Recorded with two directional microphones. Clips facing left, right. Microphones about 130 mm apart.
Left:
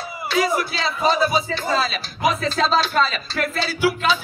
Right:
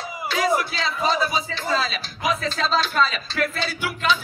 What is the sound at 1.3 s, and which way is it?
A man's voice, 40° left (ahead or behind).